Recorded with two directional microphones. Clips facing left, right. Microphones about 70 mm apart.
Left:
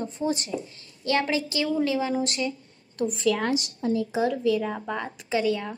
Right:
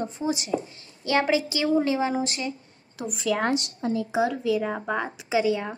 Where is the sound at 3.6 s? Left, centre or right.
Right.